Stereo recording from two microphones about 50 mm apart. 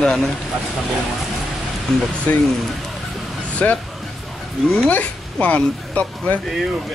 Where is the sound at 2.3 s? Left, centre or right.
Left.